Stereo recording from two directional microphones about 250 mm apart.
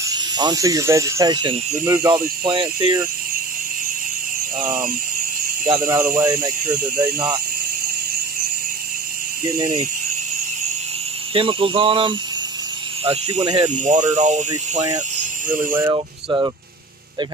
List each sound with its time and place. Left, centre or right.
0.0 s speech: centre
5.7 s speech: centre
11.3 s speech: right
13.7 s speech: right
15.7 s speech: centre